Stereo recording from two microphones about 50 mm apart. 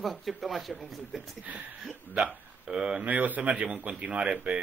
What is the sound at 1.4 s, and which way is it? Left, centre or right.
Speech, right.